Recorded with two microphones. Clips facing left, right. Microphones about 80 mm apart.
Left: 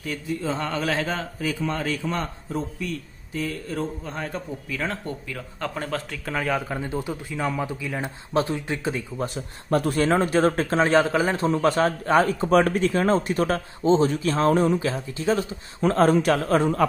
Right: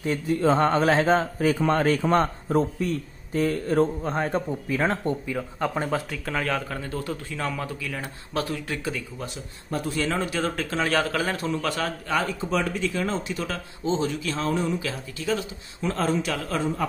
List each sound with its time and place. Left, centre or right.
0.3 s a man's voice: right
1.5 s a man's voice: right
5.3 s speech: centre
6.2 s speech: centre
6.7 s speech: centre
9.7 s a man's voice: left
14.9 s a man's voice: left
15.8 s a man's voice: left